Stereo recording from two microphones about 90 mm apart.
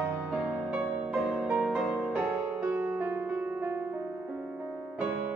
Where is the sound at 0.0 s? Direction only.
5° right (ahead or behind).